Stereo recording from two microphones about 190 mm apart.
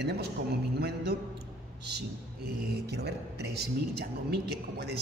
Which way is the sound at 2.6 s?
60° right (ahead or behind).